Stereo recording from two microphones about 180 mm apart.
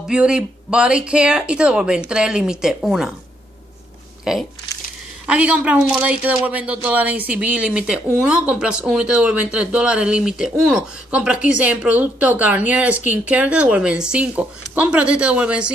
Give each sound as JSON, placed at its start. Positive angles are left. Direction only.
{"t": 0.1, "sound": "speech", "side_deg": -5}
{"t": 4.2, "sound": "speech", "side_deg": 0}